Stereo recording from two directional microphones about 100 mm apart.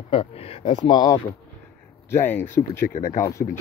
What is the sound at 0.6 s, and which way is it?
Speech, 50° left (ahead or behind).